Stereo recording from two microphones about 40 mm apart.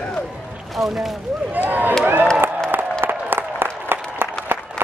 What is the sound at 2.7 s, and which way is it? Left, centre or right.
Applause, right.